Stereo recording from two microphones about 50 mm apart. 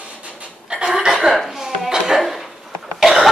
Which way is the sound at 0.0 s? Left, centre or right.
Right.